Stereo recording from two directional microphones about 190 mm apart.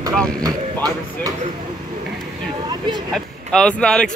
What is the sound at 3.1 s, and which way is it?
Speech, 5° left (ahead or behind).